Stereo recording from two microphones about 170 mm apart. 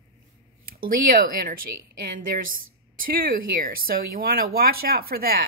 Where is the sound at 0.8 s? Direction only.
55° right (ahead or behind).